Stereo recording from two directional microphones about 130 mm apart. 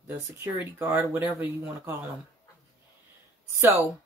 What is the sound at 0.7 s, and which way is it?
Speech, 15° right (ahead or behind).